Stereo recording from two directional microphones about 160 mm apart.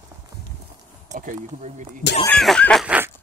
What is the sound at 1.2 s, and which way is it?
Speech, 50° right (ahead or behind).